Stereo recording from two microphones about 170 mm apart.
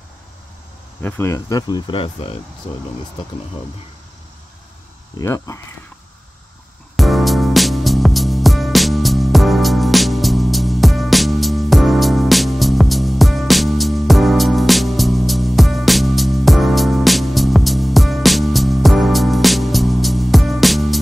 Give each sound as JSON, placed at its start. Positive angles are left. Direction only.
{"t": 1.0, "sound": "speech", "side_deg": 15}
{"t": 5.2, "sound": "speech", "side_deg": 15}
{"t": 7.0, "sound": "music", "side_deg": 0}